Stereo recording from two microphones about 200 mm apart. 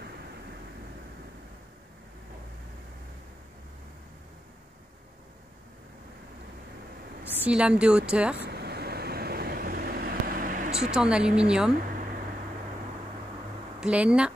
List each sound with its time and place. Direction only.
7.2 s speech: 10° right (ahead or behind)
8.4 s vehicle: 55° right (ahead or behind)
10.9 s speech: 5° right (ahead or behind)
13.7 s speech: 5° right (ahead or behind)